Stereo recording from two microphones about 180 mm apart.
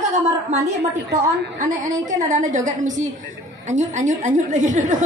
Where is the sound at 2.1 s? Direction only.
45° right (ahead or behind).